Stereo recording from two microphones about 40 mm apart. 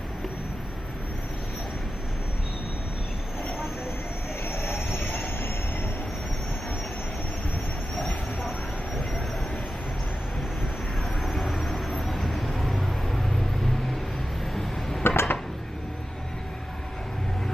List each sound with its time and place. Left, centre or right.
4.5 s train: left
8.4 s train: centre
11.2 s vehicle: centre
14.5 s tick-tock: centre
15.0 s a sound: left